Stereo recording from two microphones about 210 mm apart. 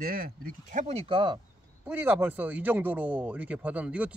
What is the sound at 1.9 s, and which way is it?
Speech, 10° right (ahead or behind).